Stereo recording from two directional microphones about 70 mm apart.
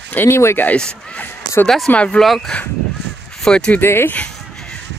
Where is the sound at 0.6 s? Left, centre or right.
Centre.